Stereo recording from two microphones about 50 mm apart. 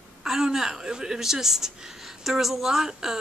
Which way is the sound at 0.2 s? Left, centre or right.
Centre.